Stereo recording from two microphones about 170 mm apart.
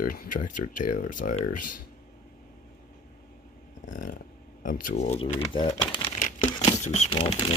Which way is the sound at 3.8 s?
50° left (ahead or behind).